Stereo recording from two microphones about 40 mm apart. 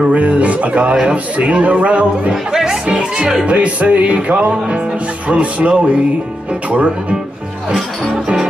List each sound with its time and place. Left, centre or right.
0.0 s speech: right
2.5 s music: centre
3.4 s speech: right